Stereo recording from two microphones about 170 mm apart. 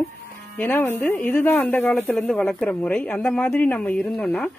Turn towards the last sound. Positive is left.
turn(degrees=5)  # may be behind; listen again after turning